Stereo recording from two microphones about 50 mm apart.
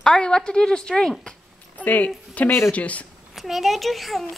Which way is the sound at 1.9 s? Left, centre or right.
Left.